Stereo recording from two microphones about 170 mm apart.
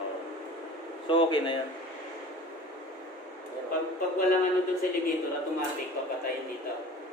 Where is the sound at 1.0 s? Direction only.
30° left (ahead or behind).